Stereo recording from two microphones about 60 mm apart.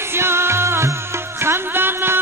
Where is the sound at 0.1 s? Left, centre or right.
Right.